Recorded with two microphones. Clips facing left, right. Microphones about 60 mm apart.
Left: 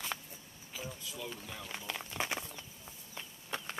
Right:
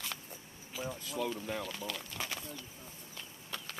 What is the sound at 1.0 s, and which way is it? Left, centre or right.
Speech, right.